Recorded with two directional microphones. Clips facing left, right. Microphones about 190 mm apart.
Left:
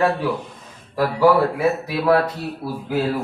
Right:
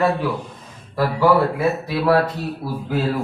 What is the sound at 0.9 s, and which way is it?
A man's voice, 10° left (ahead or behind).